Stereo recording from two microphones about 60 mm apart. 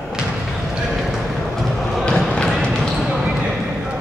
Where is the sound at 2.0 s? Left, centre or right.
Centre.